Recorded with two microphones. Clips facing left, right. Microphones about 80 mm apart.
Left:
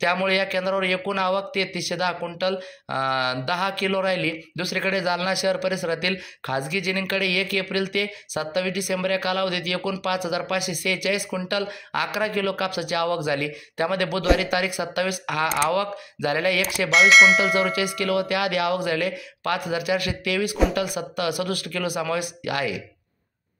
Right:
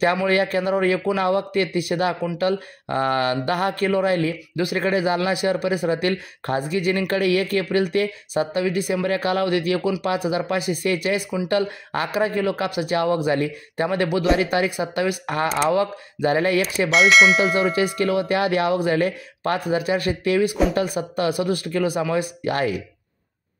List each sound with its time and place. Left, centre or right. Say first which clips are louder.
0.3 s speech: right 3 dB; right
16.9 s speech: even; centre
17.7 s speech: right 3 dB; right